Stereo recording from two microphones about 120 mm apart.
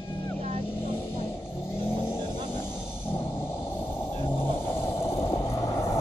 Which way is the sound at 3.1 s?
20° left (ahead or behind).